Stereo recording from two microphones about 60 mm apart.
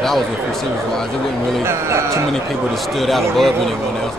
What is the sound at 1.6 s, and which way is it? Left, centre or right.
Speech, right.